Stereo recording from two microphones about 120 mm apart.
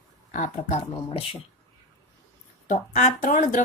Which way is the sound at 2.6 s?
80° left.